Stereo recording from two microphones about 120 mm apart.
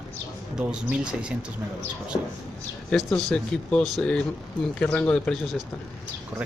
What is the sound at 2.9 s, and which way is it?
Speech, 5° left (ahead or behind).